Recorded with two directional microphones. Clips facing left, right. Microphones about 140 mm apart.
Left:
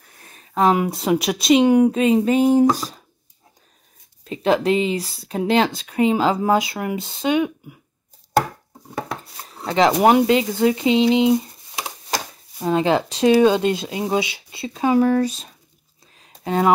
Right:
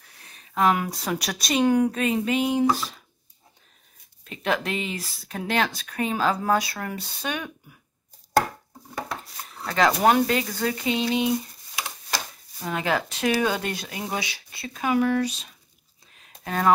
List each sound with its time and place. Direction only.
0.6 s speech: 25° left (ahead or behind); by 3.0 s 40° left (ahead or behind)
4.2 s speech: 30° left (ahead or behind)
8.9 s speech: 20° left (ahead or behind); by 15.5 s 40° left (ahead or behind)
16.2 s a sound: 25° left (ahead or behind)